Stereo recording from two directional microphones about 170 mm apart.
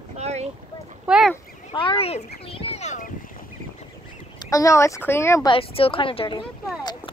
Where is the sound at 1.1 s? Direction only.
Centre (ahead or behind).